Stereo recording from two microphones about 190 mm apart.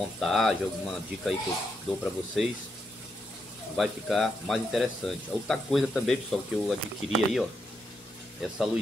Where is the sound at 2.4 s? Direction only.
Centre (ahead or behind).